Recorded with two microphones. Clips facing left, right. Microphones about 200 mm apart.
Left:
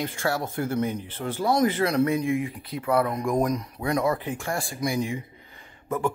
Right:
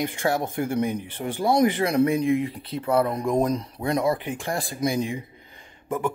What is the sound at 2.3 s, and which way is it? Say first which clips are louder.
Speech: right 2 dB; 30° right (ahead or behind).